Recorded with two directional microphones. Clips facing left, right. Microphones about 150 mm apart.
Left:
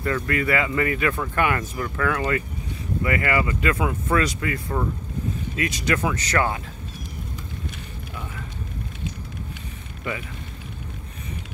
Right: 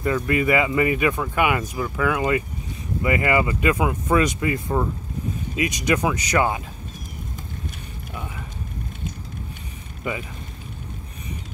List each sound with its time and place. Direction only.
0.0 s speech: 15° right (ahead or behind)
10.1 s speech: 15° right (ahead or behind)